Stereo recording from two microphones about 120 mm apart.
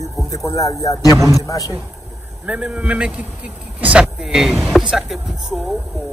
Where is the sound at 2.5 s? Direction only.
10° right (ahead or behind).